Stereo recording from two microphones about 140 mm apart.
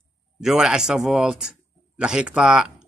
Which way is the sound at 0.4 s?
5° right (ahead or behind).